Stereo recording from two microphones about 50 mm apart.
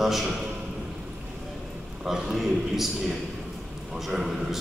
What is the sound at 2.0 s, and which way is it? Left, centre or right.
Speech, centre.